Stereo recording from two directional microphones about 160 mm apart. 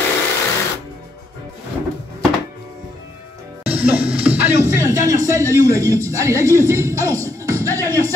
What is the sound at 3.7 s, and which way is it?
Speech, 10° right (ahead or behind).